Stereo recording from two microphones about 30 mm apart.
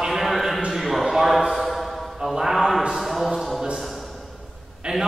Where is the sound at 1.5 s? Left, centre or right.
Centre.